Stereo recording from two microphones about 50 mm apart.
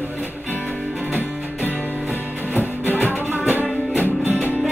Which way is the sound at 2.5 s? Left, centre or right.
Left.